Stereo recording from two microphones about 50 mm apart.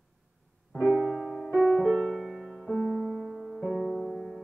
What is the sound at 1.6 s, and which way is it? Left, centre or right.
Music, centre.